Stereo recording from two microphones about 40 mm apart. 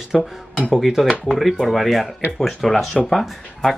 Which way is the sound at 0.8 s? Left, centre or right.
Centre.